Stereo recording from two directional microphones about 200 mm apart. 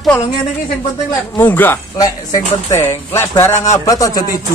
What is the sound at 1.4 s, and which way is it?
Speech, 10° left (ahead or behind).